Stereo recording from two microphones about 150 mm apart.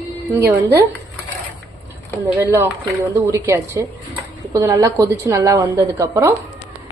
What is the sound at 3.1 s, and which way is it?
Speech, 20° right (ahead or behind).